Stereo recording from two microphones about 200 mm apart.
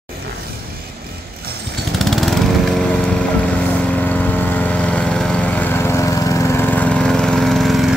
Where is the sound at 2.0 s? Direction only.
Centre (ahead or behind).